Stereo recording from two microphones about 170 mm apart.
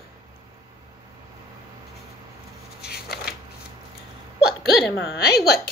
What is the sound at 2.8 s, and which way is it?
Shuffling cards, 70° left (ahead or behind).